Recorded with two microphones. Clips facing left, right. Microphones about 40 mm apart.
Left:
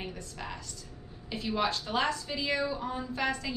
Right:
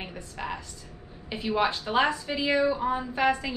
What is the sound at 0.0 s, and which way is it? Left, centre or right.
A woman's voice, right.